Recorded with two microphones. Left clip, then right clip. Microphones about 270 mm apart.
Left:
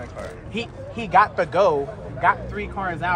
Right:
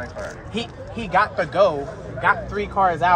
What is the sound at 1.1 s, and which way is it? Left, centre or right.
Speech, left.